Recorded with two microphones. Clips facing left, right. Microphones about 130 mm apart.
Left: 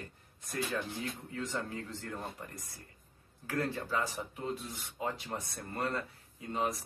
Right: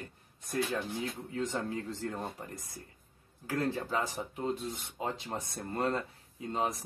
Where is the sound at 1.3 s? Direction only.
25° right (ahead or behind).